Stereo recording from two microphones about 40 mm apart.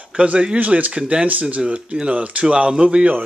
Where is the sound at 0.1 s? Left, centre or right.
Right.